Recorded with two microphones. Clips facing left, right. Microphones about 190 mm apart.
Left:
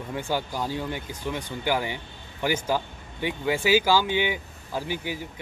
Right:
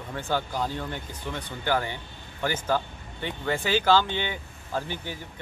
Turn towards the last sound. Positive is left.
turn(degrees=10)  # may be behind; listen again after turning